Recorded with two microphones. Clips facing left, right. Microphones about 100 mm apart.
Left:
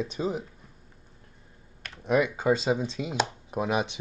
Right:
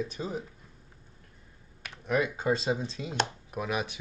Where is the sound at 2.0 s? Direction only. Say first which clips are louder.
Left 4 dB; 20° left (ahead or behind).